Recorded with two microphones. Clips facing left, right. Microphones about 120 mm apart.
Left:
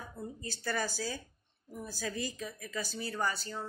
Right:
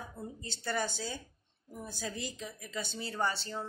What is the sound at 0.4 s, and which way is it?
Speech, 20° right (ahead or behind).